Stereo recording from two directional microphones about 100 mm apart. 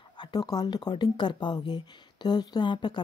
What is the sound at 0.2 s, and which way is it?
A woman's voice, 40° left (ahead or behind).